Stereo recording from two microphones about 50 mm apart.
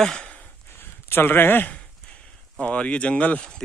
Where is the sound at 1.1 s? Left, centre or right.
Left.